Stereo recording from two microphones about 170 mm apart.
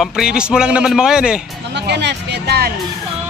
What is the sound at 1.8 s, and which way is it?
Speech, 90° right.